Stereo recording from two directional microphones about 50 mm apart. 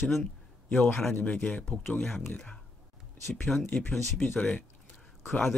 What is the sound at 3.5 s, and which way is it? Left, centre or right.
Speech, centre.